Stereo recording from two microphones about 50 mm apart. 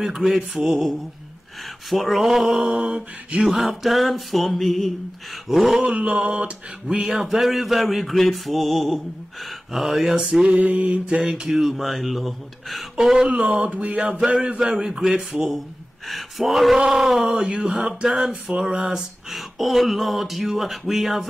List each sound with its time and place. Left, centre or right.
0.0 s mantra: centre
0.6 s speech: centre
5.8 s a sound: right
7.0 s speech: centre
10.4 s mantra: right; by 13.3 s centre
13.3 s a sound: right
14.7 s mantra: centre
16.1 s speech: centre
17.5 s a sound: right
18.0 s mantra: centre
18.9 s speech: centre